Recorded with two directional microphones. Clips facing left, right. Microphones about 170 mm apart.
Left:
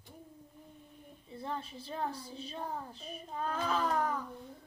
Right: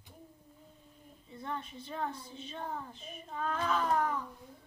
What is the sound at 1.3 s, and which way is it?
A woman's voice, 30° left (ahead or behind).